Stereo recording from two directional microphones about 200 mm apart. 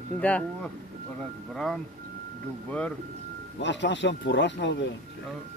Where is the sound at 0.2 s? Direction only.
5° left (ahead or behind).